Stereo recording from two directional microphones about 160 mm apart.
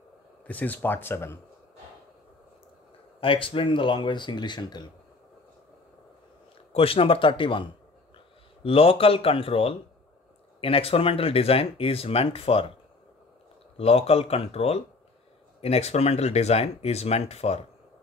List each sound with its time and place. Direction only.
0.5 s speech: 10° left (ahead or behind)
3.2 s speech: 35° left (ahead or behind)
6.7 s speech: 35° left (ahead or behind)
8.6 s speech: 35° left (ahead or behind)
13.7 s speech: 40° left (ahead or behind)